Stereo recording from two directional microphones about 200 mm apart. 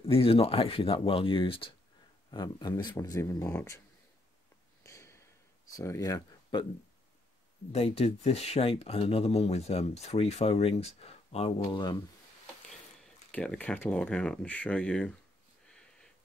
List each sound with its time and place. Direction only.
0.0 s speech: 30° left (ahead or behind); by 3.8 s 10° left (ahead or behind)
4.8 s a sound: 15° left (ahead or behind)
5.7 s speech: 15° left (ahead or behind)
7.7 s speech: 30° left (ahead or behind)
13.3 s speech: 5° left (ahead or behind)
15.6 s a sound: 5° left (ahead or behind)